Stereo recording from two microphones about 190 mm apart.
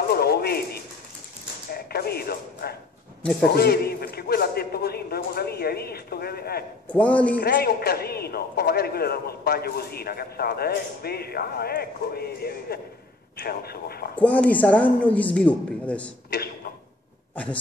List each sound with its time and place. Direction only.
0.1 s a sound: 55° left (ahead or behind)
1.7 s speech: 55° left (ahead or behind)
3.2 s a man's voice: centre (ahead or behind)
3.4 s a man's voice: 55° left (ahead or behind)
6.9 s speech: 5° left (ahead or behind)
7.3 s a man's voice: 55° left (ahead or behind)
14.1 s speech: 5° left (ahead or behind)
16.3 s a sound: 55° left (ahead or behind)